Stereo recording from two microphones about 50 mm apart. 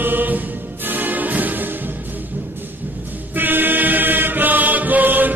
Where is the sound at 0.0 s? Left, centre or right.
Right.